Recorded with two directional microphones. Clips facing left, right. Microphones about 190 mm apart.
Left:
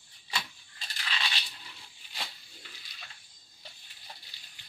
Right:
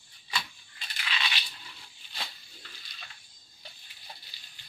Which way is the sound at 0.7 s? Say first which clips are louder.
Right 1 dB; 40° left (ahead or behind).